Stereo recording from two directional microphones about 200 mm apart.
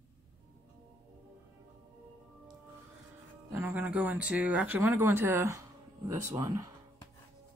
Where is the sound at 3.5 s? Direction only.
10° right (ahead or behind).